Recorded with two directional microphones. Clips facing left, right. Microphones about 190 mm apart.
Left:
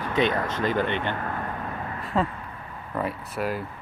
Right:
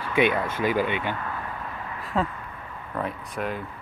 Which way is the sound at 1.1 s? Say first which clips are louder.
Left 2 dB; 45° left (ahead or behind).